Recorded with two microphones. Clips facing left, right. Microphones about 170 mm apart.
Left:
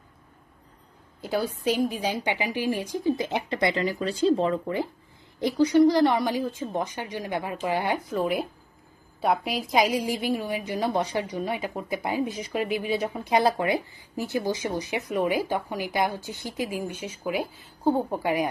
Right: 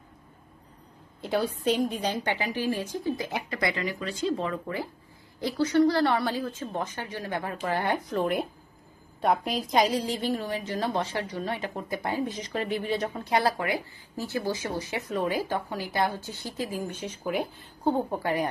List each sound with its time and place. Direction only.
1.2 s a woman's voice: centre (ahead or behind); by 4.8 s 25° left (ahead or behind)
5.4 s a woman's voice: 15° left (ahead or behind)